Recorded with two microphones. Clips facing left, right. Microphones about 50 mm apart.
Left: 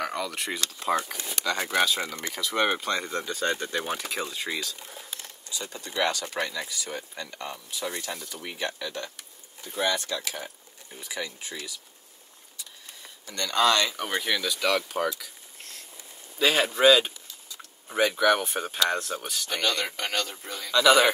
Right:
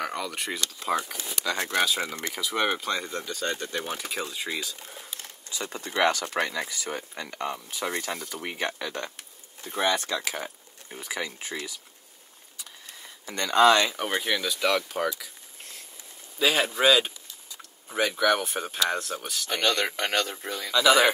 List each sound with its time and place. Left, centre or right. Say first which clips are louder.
0.0 s speech: left 1 dB; centre
2.7 s speech: left 1 dB; centre
5.5 s speech: right 3 dB; right
13.2 s speech: right 4 dB; right; by 15.2 s centre
16.3 s speech: left 1 dB; centre
20.0 s speech: right 3 dB; right
20.7 s speech: left 1 dB; centre